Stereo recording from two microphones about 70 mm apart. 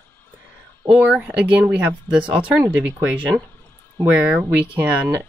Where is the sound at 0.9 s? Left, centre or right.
Centre.